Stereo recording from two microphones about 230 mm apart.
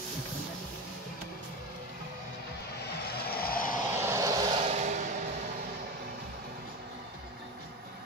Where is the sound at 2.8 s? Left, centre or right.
Left.